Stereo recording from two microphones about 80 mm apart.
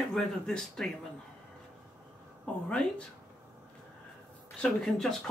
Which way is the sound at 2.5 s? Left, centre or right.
Centre.